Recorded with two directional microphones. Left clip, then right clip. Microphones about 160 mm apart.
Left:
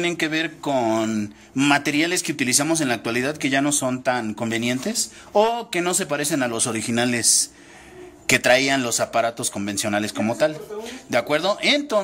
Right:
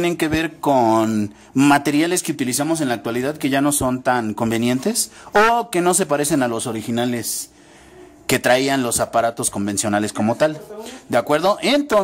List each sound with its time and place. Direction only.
0.0 s a man's voice: 50° right (ahead or behind)
2.3 s speech: 30° right (ahead or behind)
3.3 s a man's voice: 40° right (ahead or behind)
6.5 s speech: 20° right (ahead or behind)
8.5 s a man's voice: 35° right (ahead or behind)